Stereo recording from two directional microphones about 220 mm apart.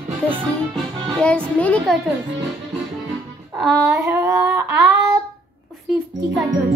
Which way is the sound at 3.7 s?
15° right (ahead or behind).